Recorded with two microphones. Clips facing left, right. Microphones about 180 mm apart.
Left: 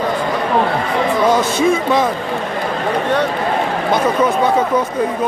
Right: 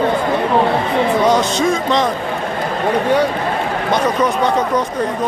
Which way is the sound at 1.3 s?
5° left (ahead or behind).